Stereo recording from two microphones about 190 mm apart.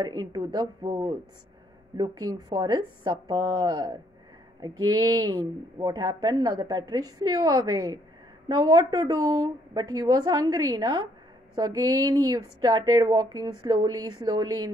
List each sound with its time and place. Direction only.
0.0 s a woman's voice: 20° right (ahead or behind)
4.6 s a sound: 20° right (ahead or behind)
5.0 s a woman's voice: 20° right (ahead or behind)